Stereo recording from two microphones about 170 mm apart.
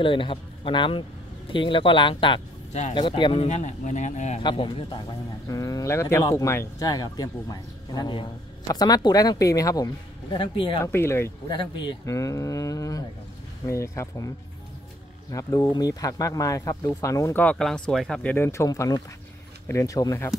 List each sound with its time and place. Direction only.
0.0 s a man's voice: 30° left (ahead or behind)
3.4 s speech: 45° left (ahead or behind)
4.4 s speech: 25° left (ahead or behind)
5.5 s speech: 20° left (ahead or behind)
10.9 s speech: 15° left (ahead or behind)
11.4 s speech: 25° left (ahead or behind)
15.3 s speech: 20° left (ahead or behind)